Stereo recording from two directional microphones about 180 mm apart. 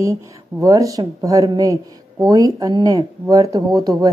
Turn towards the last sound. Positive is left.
turn(degrees=-20)  # may be behind; listen again after turning